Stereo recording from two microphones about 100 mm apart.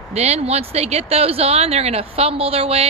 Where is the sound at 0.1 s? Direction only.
90° right.